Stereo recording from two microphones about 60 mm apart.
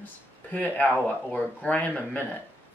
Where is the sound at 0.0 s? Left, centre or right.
Left.